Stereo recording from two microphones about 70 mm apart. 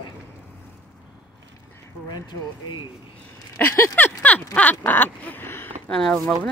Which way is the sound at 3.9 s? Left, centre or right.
Left.